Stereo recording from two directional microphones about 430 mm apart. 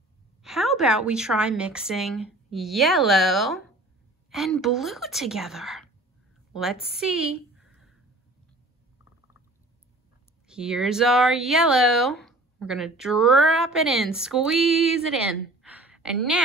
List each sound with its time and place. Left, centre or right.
0.4 s a woman's voice: centre
10.5 s speech: centre
15.6 s a sound: centre